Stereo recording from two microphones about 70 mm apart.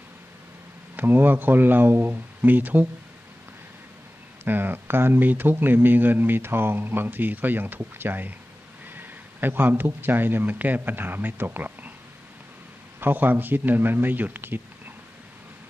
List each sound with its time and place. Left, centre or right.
0.9 s a man's voice: right
4.5 s a man's voice: right
13.0 s a man's voice: right